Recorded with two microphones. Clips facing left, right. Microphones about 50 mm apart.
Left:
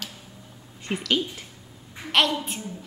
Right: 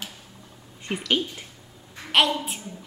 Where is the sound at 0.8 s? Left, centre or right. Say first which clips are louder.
Even; centre.